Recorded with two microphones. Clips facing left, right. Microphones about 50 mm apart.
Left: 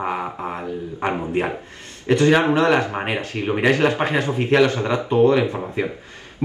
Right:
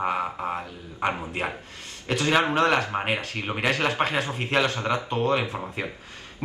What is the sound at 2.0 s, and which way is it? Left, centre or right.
A man's voice, left.